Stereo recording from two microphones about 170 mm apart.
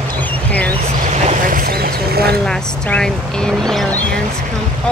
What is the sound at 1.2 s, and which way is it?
Vehicle, 55° right (ahead or behind).